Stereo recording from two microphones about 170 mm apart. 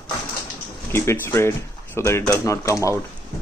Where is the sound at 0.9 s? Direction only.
15° left (ahead or behind).